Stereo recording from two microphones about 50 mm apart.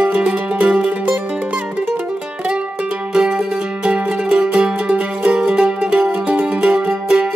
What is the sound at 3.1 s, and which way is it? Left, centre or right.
Music, centre.